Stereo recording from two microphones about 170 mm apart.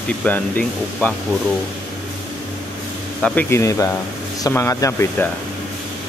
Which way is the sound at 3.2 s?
10° left (ahead or behind).